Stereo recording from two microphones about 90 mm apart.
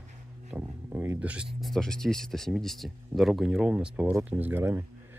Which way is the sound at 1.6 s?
5° left (ahead or behind).